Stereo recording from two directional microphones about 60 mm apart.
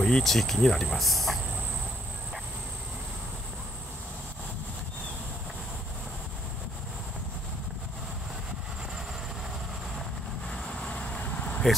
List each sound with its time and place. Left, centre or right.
0.0 s speech: centre
10.5 s vehicle: centre